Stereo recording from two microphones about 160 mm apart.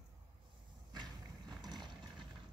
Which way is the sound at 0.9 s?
25° right (ahead or behind).